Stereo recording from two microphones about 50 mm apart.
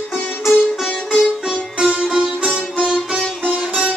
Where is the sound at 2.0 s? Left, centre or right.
Centre.